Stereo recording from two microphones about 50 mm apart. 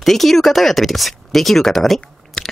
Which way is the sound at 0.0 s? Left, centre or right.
Centre.